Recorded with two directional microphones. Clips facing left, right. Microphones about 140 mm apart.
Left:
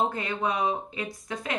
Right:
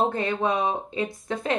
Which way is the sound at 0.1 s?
25° right (ahead or behind).